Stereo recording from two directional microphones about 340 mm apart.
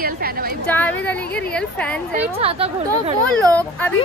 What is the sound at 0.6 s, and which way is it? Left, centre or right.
A woman's voice, centre.